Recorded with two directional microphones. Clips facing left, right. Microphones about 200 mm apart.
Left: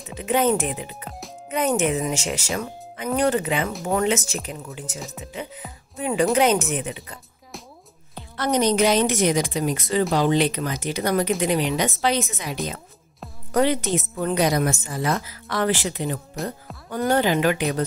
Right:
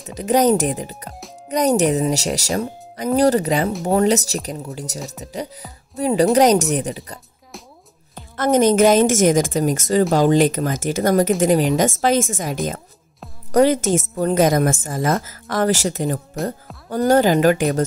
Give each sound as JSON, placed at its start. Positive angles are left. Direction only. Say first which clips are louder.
{"t": 0.1, "sound": "speech", "louder": "right 5 dB", "side_deg": -40}
{"t": 8.4, "sound": "a woman's voice", "louder": "right 6 dB", "side_deg": -50}